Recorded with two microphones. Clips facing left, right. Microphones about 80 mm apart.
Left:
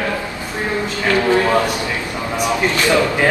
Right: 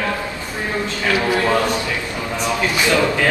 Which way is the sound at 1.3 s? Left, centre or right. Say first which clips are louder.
Left 3 dB; left.